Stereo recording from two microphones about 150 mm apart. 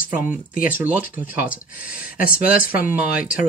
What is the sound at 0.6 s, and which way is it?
Speech, 10° right (ahead or behind).